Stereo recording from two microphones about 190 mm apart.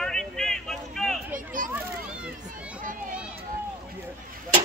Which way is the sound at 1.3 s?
45° right (ahead or behind).